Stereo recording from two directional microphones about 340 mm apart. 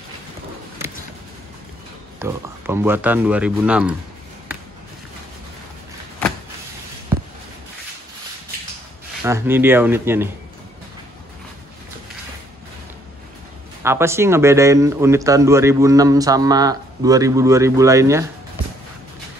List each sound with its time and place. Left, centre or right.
2.1 s speech: centre
9.2 s speech: centre
13.8 s speech: centre